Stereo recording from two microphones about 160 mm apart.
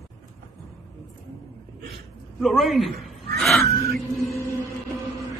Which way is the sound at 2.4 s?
Centre (ahead or behind).